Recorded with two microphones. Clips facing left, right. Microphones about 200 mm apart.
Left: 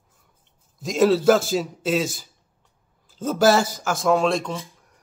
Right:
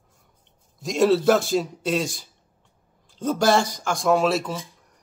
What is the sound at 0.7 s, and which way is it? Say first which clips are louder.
A man's voice: left 1 dB; centre (ahead or behind).